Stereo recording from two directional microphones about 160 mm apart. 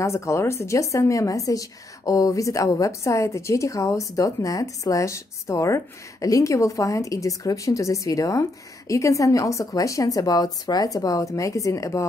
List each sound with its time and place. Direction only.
0.0 s a woman's voice: 15° left (ahead or behind)